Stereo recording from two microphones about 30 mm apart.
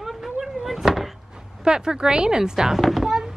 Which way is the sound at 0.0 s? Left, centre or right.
Centre.